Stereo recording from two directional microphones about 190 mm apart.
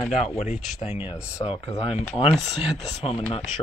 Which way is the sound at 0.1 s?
35° left (ahead or behind).